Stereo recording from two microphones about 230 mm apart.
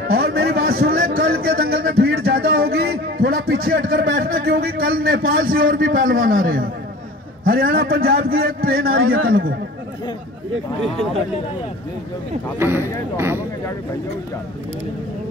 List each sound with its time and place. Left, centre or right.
0.1 s a sound: right
3.5 s a man's voice: right
8.9 s a man's voice: right
12.5 s speech: centre